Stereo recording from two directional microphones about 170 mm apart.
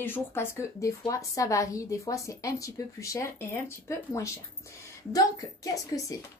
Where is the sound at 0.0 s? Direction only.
15° left (ahead or behind).